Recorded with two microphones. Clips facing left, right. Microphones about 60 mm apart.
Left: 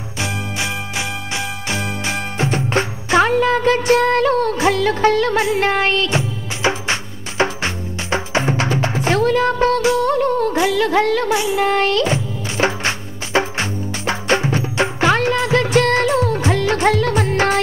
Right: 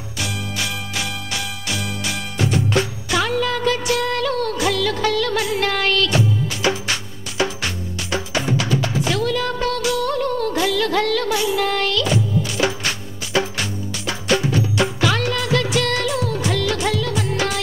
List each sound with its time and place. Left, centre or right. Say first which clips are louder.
0.2 s music: left 3 dB; left